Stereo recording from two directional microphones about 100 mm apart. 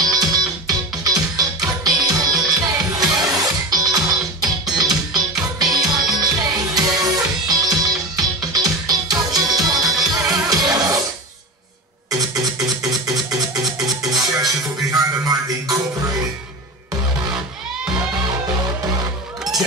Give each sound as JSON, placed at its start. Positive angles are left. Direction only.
{"t": 0.0, "sound": "music", "side_deg": -40}
{"t": 12.1, "sound": "music", "side_deg": -40}
{"t": 12.6, "sound": "a sound", "side_deg": 0}
{"t": 13.3, "sound": "music", "side_deg": -35}